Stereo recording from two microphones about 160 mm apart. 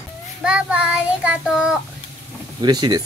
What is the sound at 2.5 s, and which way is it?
Speech, 25° right (ahead or behind).